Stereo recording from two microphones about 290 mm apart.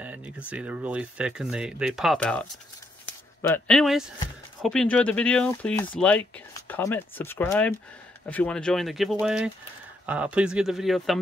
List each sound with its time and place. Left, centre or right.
0.0 s speech: centre
3.4 s speech: centre